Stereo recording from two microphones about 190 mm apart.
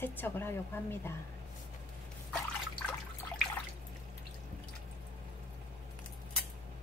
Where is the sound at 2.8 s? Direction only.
10° left (ahead or behind).